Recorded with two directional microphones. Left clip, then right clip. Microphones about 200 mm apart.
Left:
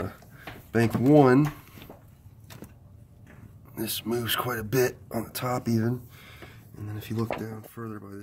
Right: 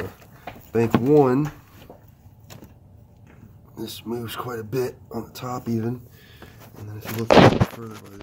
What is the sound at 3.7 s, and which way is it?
Speech, 35° left (ahead or behind).